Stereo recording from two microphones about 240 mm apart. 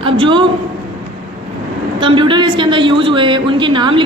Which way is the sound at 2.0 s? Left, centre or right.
Right.